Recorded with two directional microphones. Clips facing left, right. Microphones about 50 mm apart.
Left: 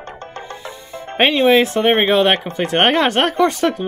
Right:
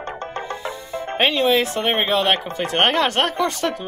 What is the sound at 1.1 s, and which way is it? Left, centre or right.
Speech, left.